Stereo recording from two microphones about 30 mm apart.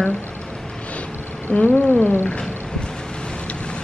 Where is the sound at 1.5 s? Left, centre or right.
Left.